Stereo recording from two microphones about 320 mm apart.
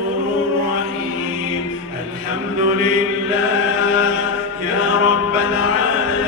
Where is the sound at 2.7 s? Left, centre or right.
Left.